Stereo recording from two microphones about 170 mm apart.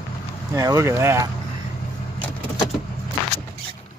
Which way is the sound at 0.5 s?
20° right (ahead or behind).